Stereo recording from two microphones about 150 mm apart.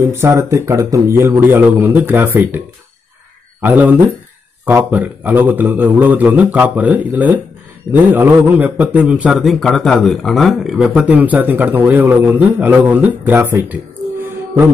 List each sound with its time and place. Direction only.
0.0 s a man's voice: 15° right (ahead or behind)
3.6 s a man's voice: 10° right (ahead or behind)
14.2 s music: 15° right (ahead or behind)